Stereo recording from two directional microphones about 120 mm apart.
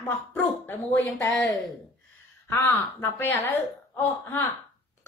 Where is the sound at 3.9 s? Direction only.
20° left (ahead or behind).